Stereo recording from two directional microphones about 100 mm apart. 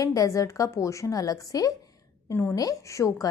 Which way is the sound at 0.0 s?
35° left (ahead or behind).